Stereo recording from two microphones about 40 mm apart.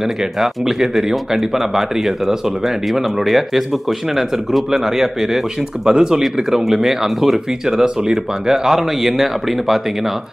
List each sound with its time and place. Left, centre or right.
0.2 s speech: centre
7.6 s speech: centre